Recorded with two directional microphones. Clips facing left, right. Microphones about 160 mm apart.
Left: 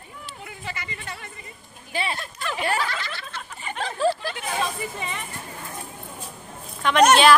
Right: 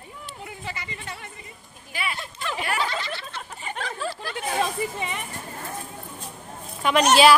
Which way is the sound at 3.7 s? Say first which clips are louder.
Left 9 dB; 30° left (ahead or behind).